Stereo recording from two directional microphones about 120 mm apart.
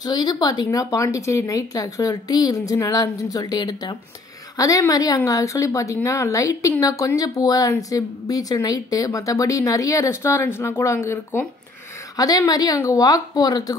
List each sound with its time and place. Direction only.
0.0 s a woman's voice: 30° left (ahead or behind)